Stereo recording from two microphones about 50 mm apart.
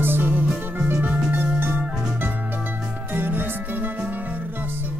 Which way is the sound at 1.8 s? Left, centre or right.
Centre.